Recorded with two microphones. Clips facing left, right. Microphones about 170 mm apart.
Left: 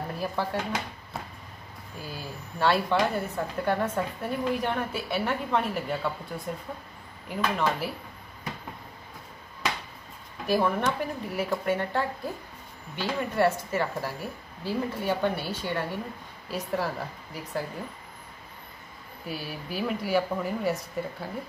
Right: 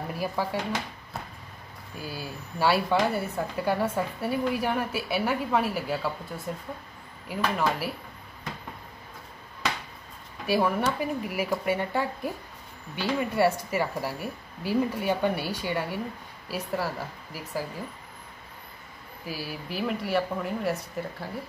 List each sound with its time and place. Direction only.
0.2 s a woman's voice: 10° right (ahead or behind)
2.0 s a woman's voice: 5° right (ahead or behind)
10.4 s a woman's voice: 10° right (ahead or behind)
19.2 s speech: centre (ahead or behind)